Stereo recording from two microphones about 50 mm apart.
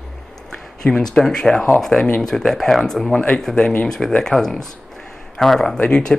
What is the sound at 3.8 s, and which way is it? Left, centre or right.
Speech, centre.